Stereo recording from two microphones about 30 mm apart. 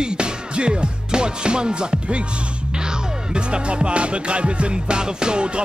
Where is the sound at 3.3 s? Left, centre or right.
Right.